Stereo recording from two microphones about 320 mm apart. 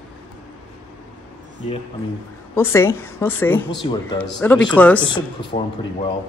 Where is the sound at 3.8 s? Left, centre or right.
Centre.